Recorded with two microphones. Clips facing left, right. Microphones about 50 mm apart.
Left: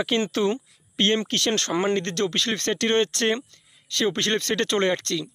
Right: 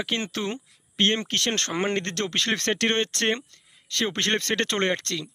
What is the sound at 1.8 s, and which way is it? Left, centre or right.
Speech, right.